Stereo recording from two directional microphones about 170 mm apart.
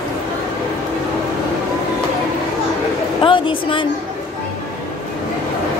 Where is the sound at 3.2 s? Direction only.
30° left (ahead or behind).